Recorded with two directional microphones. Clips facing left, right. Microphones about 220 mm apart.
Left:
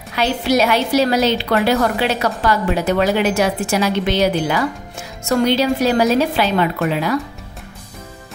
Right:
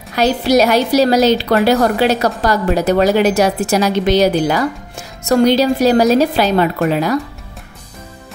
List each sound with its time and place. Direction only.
0.1 s a woman's voice: 40° right (ahead or behind)